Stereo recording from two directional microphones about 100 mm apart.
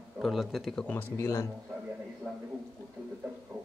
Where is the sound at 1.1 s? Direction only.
25° left (ahead or behind).